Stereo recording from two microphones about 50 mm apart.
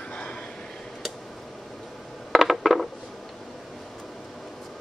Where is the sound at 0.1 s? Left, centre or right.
Left.